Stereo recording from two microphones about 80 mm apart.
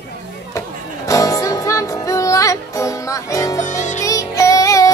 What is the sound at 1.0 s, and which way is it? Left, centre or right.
Music, left.